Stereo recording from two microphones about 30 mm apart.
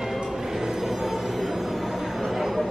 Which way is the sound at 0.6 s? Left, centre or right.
Centre.